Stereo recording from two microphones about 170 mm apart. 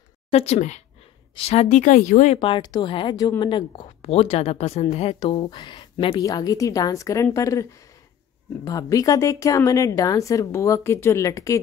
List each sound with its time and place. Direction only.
0.3 s a woman's voice: 40° left (ahead or behind)
2.3 s a woman's voice: 30° left (ahead or behind)
5.2 s a woman's voice: 25° left (ahead or behind)
8.6 s a woman's voice: 20° left (ahead or behind)